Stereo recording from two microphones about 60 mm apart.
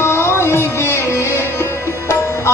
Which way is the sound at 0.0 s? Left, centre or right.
Left.